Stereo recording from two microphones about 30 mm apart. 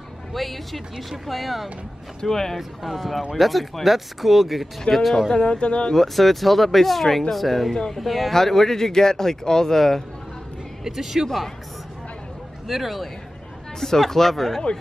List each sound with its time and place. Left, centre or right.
0.3 s speech: centre
2.2 s speech: centre
2.8 s speech: centre
5.3 s a man's voice: left
5.9 s speech: centre
8.3 s speech: centre
10.8 s speech: centre
12.6 s speech: centre
13.7 s speech: centre